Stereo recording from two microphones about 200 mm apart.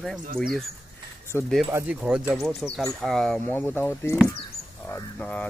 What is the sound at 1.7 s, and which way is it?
Speech, 10° right (ahead or behind).